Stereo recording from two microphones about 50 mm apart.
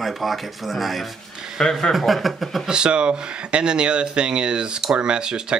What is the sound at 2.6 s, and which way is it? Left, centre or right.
Speech, centre.